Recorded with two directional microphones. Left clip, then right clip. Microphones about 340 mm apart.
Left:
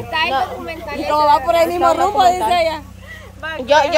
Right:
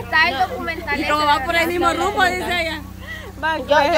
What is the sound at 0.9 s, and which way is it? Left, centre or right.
Speech, centre.